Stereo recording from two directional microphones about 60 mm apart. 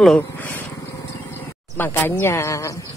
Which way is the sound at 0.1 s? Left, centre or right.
Left.